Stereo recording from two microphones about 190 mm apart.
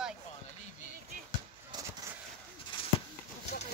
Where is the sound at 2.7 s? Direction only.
25° left (ahead or behind).